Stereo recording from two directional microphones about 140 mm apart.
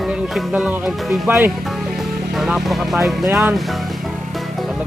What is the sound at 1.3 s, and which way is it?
Speech, 15° right (ahead or behind).